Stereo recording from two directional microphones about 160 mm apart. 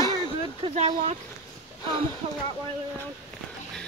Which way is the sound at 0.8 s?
45° right (ahead or behind).